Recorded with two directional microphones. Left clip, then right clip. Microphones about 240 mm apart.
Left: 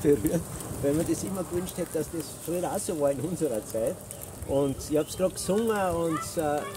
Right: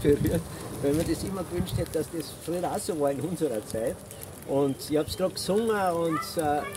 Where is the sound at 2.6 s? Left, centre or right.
Centre.